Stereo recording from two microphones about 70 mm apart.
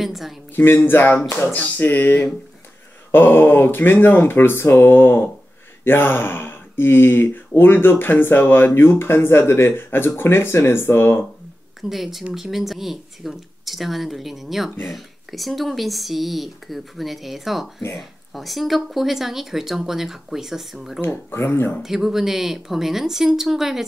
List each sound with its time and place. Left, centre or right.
0.0 s speech: centre
0.6 s speech: left
11.9 s speech: centre
21.0 s speech: left
21.8 s speech: centre